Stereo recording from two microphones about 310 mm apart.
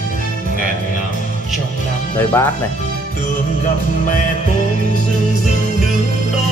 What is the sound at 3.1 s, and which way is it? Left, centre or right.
Music, left.